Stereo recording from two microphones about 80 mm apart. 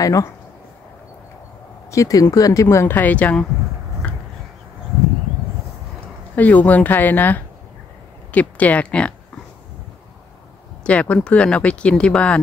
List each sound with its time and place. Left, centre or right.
0.0 s speech: left
1.9 s speech: left
2.9 s speech: left
6.3 s speech: left
10.8 s speech: centre